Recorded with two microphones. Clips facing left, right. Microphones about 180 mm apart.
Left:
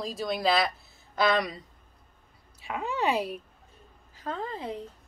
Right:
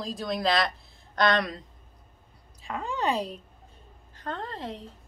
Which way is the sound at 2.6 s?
5° left (ahead or behind).